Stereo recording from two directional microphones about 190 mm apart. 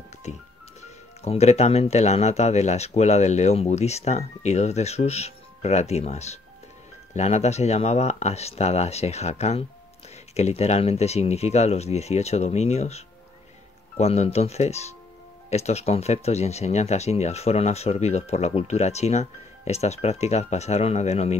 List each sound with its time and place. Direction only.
0.2 s speech: 35° left (ahead or behind)